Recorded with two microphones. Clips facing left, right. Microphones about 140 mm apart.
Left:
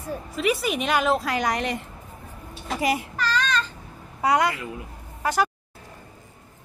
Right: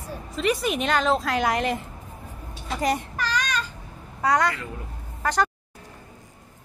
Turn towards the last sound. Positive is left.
turn(degrees=10)  # may be behind; listen again after turning